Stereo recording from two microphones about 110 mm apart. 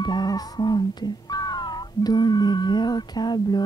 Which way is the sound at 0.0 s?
40° left (ahead or behind).